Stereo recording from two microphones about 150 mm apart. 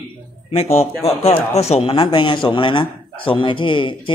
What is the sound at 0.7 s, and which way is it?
A man's voice, 40° left (ahead or behind).